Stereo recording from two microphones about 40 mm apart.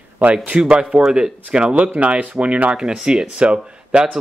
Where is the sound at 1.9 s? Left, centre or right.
Right.